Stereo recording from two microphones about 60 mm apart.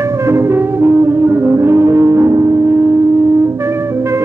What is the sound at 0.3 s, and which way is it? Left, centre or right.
Music, right.